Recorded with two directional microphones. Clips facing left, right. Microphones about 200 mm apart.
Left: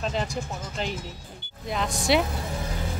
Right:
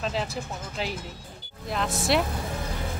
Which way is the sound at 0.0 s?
Centre (ahead or behind).